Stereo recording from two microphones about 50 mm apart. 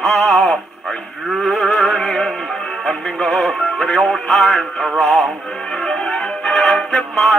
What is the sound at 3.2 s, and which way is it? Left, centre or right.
Music, centre.